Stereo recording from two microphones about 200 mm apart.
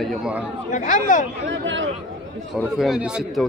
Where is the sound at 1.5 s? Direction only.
70° right (ahead or behind).